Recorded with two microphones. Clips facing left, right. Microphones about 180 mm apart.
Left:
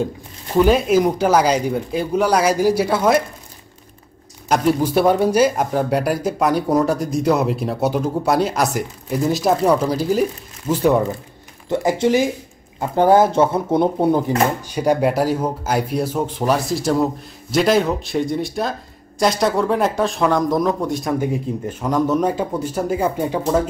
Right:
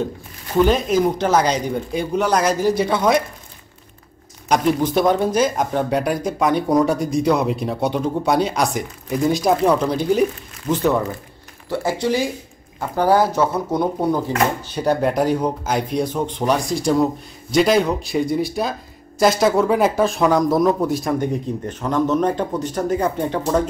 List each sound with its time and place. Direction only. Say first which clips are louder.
0.6 s speech: left 2 dB; 10° left (ahead or behind)
4.5 s speech: left 1 dB; 5° left (ahead or behind)